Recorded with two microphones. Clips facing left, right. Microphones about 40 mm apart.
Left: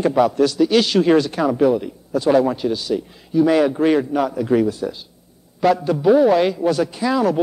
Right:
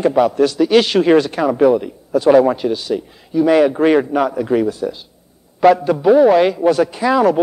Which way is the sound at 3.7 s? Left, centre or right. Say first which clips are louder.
Right 3 dB; right.